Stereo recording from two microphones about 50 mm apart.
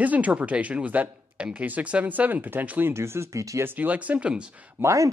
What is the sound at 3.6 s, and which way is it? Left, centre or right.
Speech, right.